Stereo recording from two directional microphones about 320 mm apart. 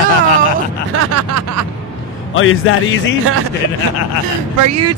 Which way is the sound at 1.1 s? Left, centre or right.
Right.